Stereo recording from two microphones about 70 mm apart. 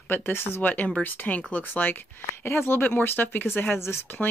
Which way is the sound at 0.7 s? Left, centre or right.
Left.